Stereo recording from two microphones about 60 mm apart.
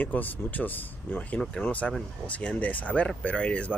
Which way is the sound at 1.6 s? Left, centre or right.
Left.